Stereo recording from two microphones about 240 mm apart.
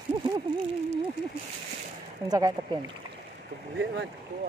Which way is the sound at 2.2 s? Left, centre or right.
Centre.